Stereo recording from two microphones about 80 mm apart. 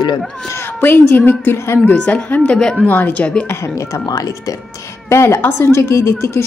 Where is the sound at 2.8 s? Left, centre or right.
Left.